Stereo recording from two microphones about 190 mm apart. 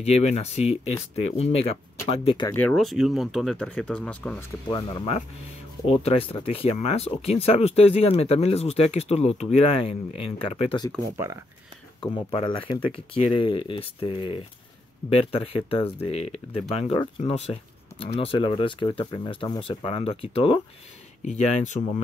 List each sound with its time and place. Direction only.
0.0 s speech: 35° left (ahead or behind)
2.5 s speech: 5° left (ahead or behind)
4.6 s speech: 20° left (ahead or behind)
6.0 s speech: 30° left (ahead or behind)
12.1 s speech: 25° left (ahead or behind)